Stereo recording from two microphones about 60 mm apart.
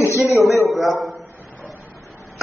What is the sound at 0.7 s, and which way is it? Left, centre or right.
Speech, centre.